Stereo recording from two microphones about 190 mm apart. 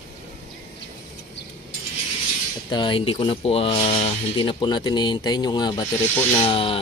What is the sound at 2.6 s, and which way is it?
Speech, 25° left (ahead or behind).